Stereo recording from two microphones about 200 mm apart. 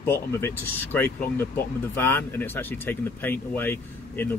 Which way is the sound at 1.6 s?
10° left (ahead or behind).